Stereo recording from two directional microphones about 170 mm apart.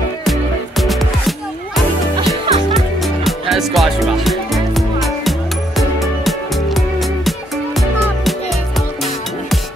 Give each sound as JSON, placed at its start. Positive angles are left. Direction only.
{"t": 0.2, "sound": "music", "side_deg": 0}